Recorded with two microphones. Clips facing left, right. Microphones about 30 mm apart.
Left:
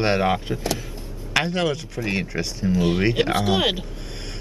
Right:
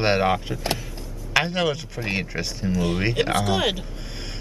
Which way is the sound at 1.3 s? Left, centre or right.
Centre.